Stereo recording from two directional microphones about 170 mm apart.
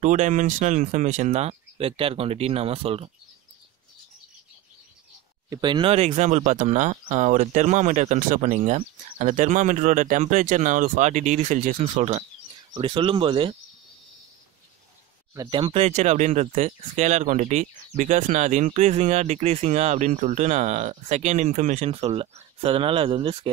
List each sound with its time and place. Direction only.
0.0 s speech: 50° right (ahead or behind)
5.5 s speech: 25° right (ahead or behind)
15.3 s speech: 25° right (ahead or behind)